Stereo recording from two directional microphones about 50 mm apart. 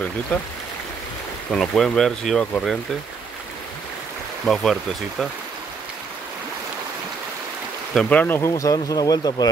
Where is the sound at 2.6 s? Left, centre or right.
Centre.